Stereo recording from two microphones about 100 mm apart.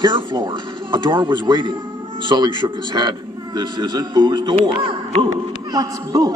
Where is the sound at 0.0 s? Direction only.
50° right (ahead or behind).